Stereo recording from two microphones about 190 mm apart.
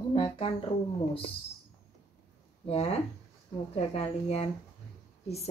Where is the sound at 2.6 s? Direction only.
30° left (ahead or behind).